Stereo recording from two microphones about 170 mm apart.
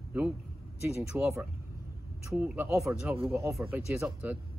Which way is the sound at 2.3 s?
10° right (ahead or behind).